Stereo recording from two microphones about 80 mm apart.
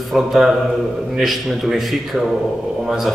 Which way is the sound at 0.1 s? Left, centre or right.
Centre.